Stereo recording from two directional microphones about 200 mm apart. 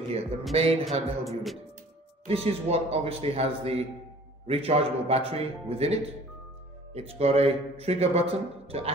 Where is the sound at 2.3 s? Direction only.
30° right (ahead or behind).